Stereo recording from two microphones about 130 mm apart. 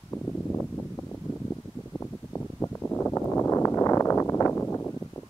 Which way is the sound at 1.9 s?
15° left (ahead or behind).